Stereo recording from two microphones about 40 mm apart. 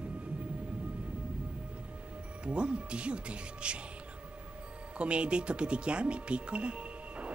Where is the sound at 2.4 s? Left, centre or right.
Right.